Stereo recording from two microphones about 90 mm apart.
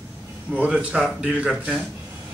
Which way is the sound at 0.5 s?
10° right (ahead or behind).